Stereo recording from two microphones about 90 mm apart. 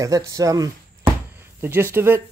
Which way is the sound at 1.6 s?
25° right (ahead or behind).